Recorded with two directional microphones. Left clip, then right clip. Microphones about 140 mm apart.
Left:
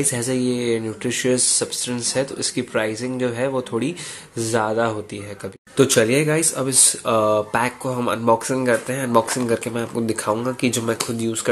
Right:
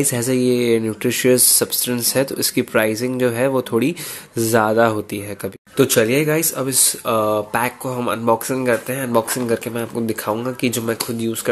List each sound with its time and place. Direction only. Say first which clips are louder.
0.0 s speech: right 4 dB; 40° right (ahead or behind)
5.8 s speech: right 1 dB; 15° right (ahead or behind)